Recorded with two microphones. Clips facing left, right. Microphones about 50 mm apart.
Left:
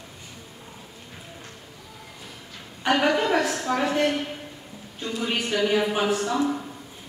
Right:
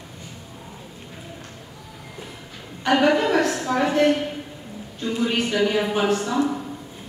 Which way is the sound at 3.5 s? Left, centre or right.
Centre.